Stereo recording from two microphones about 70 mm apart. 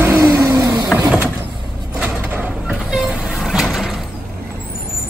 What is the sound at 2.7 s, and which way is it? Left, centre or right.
Vehicle, centre.